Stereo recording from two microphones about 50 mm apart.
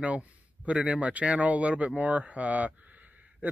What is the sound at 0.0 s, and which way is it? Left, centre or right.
Speech, right.